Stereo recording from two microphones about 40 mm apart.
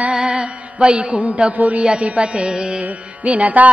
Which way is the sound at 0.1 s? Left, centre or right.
Right.